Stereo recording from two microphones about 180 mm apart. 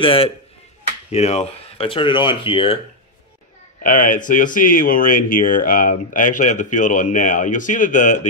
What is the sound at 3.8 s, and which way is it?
Speech, 50° left (ahead or behind).